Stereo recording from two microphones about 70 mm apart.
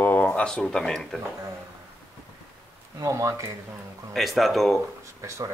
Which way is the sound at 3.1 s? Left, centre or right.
Right.